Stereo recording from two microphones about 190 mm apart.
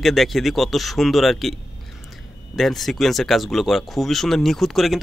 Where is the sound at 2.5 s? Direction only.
Centre (ahead or behind).